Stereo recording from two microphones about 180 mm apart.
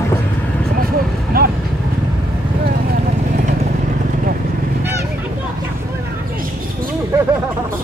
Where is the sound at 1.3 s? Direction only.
55° right (ahead or behind).